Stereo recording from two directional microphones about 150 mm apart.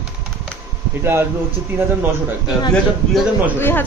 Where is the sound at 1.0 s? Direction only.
15° right (ahead or behind).